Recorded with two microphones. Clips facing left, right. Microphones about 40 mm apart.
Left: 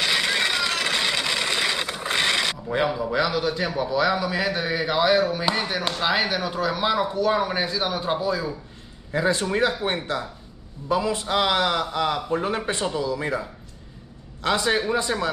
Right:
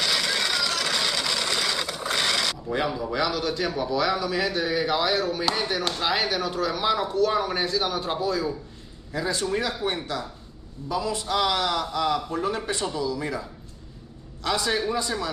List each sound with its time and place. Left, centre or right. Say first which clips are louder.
0.0 s vehicle: left 3 dB; left
4.2 s speech: left 1 dB; centre
9.1 s a man's voice: left 4 dB; left